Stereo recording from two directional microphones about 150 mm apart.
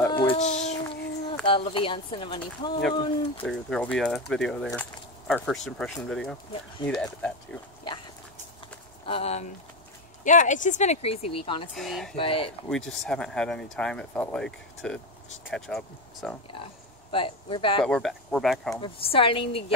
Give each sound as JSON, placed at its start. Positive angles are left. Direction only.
{"t": 0.1, "sound": "a sound", "side_deg": 35}
{"t": 0.4, "sound": "a child's voice", "side_deg": 50}
{"t": 1.4, "sound": "speech", "side_deg": 35}
{"t": 3.4, "sound": "speech", "side_deg": 0}
{"t": 9.0, "sound": "speech", "side_deg": 40}
{"t": 10.2, "sound": "speech", "side_deg": 55}
{"t": 11.7, "sound": "speech", "side_deg": 0}
{"t": 12.2, "sound": "speech", "side_deg": 40}
{"t": 12.6, "sound": "speech", "side_deg": 5}
{"t": 17.1, "sound": "speech", "side_deg": 35}
{"t": 17.8, "sound": "speech", "side_deg": 5}
{"t": 18.8, "sound": "speech", "side_deg": 35}